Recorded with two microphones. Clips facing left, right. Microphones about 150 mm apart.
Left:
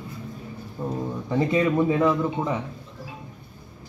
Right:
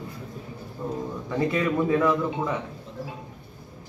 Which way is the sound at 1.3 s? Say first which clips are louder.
Left 3 dB; 15° left (ahead or behind).